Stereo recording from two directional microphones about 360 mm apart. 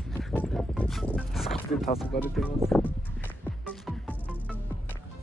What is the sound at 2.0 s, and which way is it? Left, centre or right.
Speech, centre.